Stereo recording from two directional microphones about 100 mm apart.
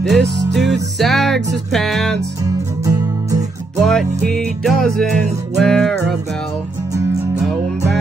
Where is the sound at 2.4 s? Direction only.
35° right (ahead or behind).